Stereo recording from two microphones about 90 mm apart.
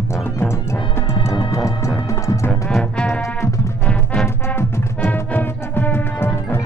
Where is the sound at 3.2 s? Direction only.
35° left (ahead or behind).